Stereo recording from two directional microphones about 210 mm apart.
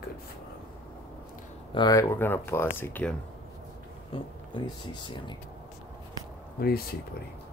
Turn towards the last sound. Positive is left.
turn(degrees=45)  # may be behind; listen again after turning